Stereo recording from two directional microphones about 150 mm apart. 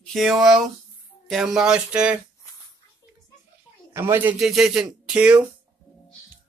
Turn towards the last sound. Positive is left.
turn(degrees=-10)  # may be behind; listen again after turning